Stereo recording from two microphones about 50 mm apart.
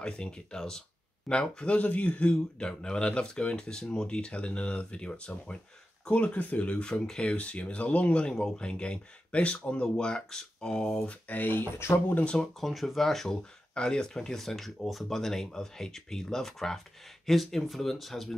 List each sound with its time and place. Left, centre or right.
0.0 s speech: centre
9.8 s speech: centre
11.1 s speech: left
11.8 s speech: left
12.5 s speech: centre
13.4 s speech: centre